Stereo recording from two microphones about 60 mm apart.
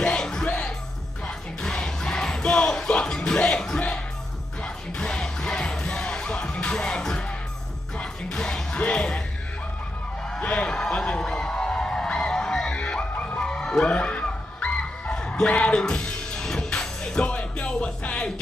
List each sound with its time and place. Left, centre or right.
0.0 s music: centre
10.3 s a sound: centre
13.4 s music: centre